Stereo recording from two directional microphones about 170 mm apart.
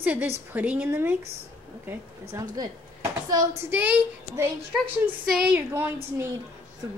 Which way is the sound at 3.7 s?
10° right (ahead or behind).